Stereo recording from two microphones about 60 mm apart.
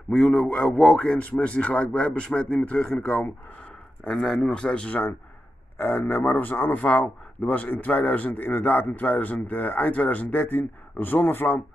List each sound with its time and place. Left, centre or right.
0.1 s a man's voice: centre; by 3.3 s left
4.0 s a man's voice: centre
5.8 s speech: left